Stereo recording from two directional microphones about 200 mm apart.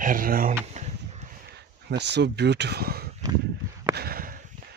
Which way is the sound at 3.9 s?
50° right (ahead or behind).